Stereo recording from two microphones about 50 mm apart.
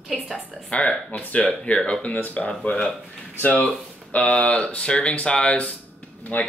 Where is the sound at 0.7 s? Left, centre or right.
Left.